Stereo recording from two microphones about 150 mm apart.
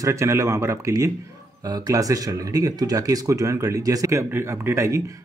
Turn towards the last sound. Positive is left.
turn(degrees=-20)  # may be behind; listen again after turning